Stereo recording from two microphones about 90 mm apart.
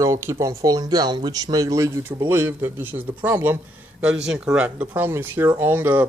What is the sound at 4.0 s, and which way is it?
A man's voice, 10° right (ahead or behind).